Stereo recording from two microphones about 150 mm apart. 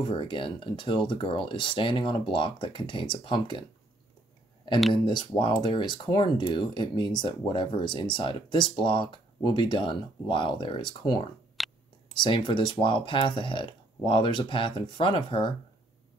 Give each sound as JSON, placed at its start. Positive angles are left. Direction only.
{"t": 0.0, "sound": "speech", "side_deg": 35}
{"t": 4.9, "sound": "speech", "side_deg": 35}
{"t": 11.6, "sound": "a sound", "side_deg": 0}
{"t": 12.1, "sound": "speech", "side_deg": 35}